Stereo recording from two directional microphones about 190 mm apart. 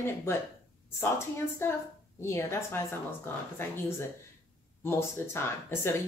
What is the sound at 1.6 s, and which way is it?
Speech, 15° left (ahead or behind).